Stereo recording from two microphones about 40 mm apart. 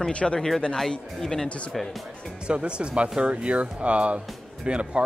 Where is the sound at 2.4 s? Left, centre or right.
Right.